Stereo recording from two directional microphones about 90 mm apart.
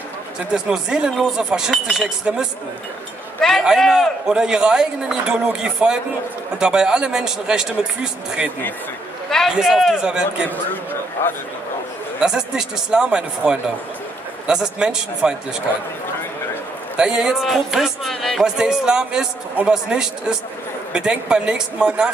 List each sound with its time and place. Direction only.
0.5 s a man's voice: 10° right (ahead or behind)
3.3 s a man's voice: 5° left (ahead or behind)
9.6 s a man's voice: centre (ahead or behind)
11.2 s a man's voice: 30° left (ahead or behind)
12.2 s a man's voice: 5° right (ahead or behind)
16.9 s a man's voice: 10° right (ahead or behind)